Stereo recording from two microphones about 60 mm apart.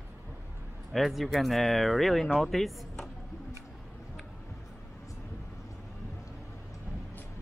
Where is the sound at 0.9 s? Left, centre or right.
Centre.